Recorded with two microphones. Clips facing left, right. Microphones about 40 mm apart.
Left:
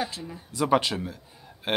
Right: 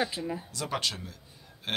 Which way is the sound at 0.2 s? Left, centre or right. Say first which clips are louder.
Right 5 dB; centre.